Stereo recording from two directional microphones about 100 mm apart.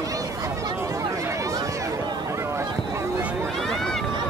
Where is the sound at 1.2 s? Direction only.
35° right (ahead or behind).